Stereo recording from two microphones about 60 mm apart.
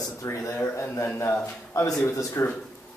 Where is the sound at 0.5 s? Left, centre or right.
Left.